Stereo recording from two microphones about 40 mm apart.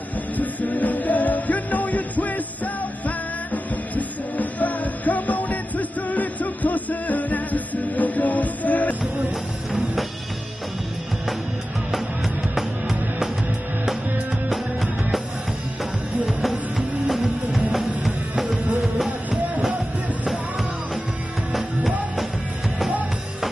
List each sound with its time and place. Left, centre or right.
0.4 s music: left
12.5 s music: centre
14.5 s music: centre
16.3 s music: centre
21.5 s music: centre